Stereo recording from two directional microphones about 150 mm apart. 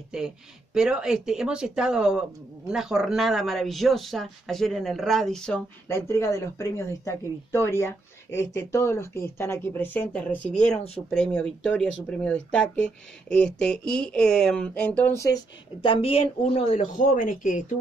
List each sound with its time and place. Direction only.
0.1 s speech: 5° right (ahead or behind)
5.9 s speech: 15° left (ahead or behind)
15.2 s a woman's voice: 30° left (ahead or behind)
16.9 s speech: 60° left (ahead or behind)